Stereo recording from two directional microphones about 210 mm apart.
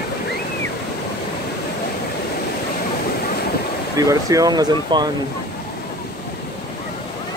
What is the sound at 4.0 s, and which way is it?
Speech, 15° right (ahead or behind).